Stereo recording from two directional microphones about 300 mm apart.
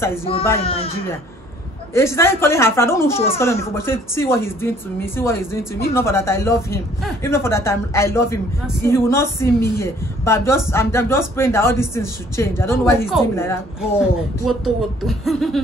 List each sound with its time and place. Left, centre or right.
0.0 s speech: centre
2.0 s speech: centre